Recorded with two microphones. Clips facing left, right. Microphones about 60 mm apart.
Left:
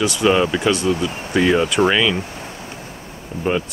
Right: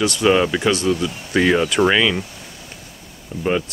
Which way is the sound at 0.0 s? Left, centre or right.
Centre.